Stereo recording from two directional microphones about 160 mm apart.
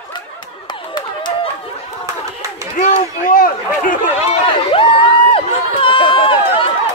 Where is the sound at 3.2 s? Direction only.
60° left (ahead or behind).